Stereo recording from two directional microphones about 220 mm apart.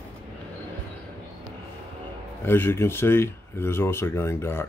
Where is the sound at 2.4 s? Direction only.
10° left (ahead or behind).